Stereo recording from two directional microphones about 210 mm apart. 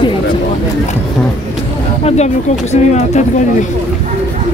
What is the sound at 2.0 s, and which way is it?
Speech, 30° left (ahead or behind).